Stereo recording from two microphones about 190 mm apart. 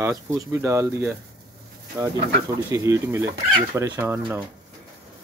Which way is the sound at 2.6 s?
15° right (ahead or behind).